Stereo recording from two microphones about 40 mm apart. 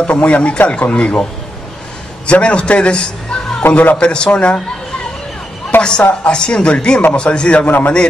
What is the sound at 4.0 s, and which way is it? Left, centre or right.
Speech, left.